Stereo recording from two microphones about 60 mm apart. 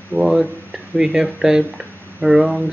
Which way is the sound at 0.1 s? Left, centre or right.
Centre.